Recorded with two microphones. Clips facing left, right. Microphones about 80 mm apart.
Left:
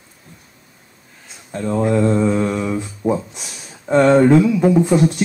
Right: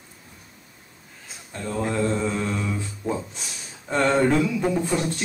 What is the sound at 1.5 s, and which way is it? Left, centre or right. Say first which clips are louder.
Speech: left 9 dB; centre.